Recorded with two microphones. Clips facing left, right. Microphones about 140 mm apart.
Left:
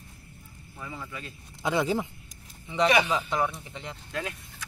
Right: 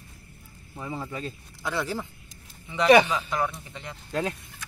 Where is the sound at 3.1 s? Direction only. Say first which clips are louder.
Left 1 dB; 20° left (ahead or behind).